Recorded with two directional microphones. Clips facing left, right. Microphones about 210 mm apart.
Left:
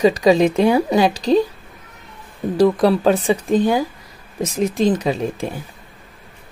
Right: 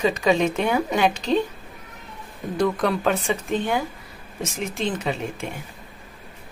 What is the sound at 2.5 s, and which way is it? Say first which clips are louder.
Speech: left 7 dB; 30° left (ahead or behind).